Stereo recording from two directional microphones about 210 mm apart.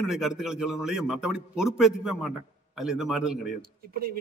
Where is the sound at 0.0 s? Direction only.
Centre (ahead or behind).